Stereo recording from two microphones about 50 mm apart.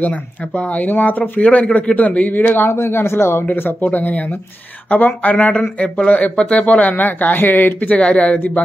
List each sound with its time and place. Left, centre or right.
0.0 s speech: left
2.7 s speech: left
3.5 s speech: left
8.0 s speech: left